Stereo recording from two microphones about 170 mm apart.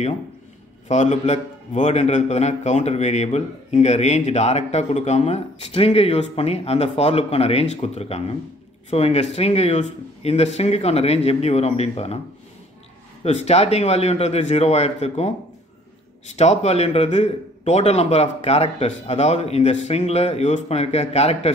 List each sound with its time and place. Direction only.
0.8 s a man's voice: 40° left (ahead or behind)
13.2 s a man's voice: 40° left (ahead or behind)